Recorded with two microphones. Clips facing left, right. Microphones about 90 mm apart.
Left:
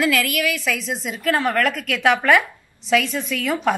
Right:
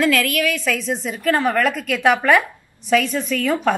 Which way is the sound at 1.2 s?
5° right (ahead or behind).